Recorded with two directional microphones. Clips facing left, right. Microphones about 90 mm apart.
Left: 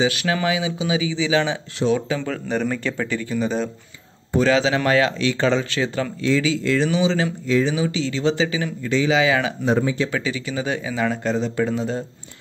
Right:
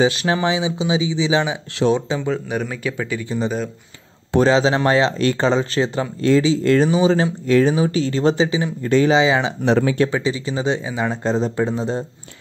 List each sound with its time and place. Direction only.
0.0 s speech: 30° right (ahead or behind); by 3.7 s centre (ahead or behind)
4.4 s a man's voice: 30° right (ahead or behind)
6.6 s speech: 45° right (ahead or behind)
7.4 s speech: 55° right (ahead or behind)
7.7 s speech: 45° right (ahead or behind)
8.4 s speech: 25° right (ahead or behind)
8.8 s speech: 45° right (ahead or behind)
9.1 s speech: 25° right (ahead or behind)
9.7 s speech: 70° right (ahead or behind)
10.1 s a man's voice: 30° right (ahead or behind)